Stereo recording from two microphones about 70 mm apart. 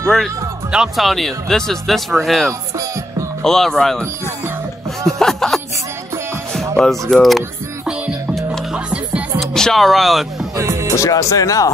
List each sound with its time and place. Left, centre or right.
0.9 s speech: centre
5.0 s speech: centre
6.8 s speech: centre
8.5 s music: centre
9.4 s speech: centre
10.5 s music: right
11.0 s speech: left